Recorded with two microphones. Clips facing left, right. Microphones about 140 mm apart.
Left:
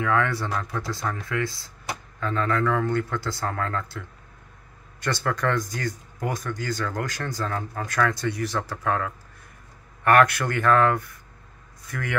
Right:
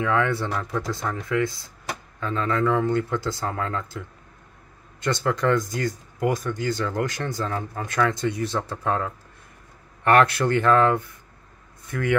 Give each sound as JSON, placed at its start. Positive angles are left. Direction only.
{"t": 0.0, "sound": "speech", "side_deg": -20}
{"t": 5.0, "sound": "speech", "side_deg": -20}